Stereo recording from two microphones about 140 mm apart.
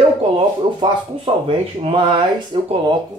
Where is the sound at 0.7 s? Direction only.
40° right (ahead or behind).